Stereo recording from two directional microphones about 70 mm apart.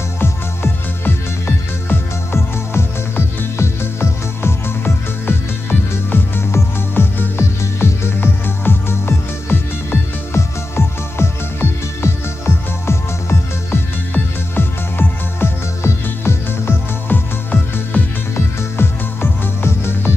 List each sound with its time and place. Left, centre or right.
0.2 s music: left